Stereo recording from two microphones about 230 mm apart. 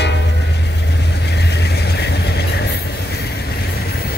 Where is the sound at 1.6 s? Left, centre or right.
Left.